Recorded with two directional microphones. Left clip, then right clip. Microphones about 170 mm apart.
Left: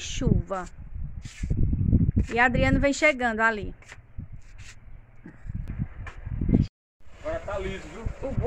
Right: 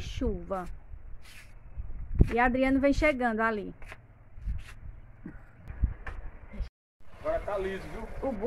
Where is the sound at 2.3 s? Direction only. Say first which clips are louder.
Left 3 dB; centre (ahead or behind).